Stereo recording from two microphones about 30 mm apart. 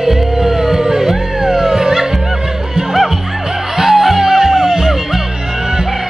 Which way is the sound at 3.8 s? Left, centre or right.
Centre.